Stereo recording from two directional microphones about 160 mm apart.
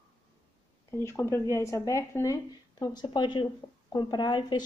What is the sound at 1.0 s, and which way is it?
A woman's voice, 15° left (ahead or behind).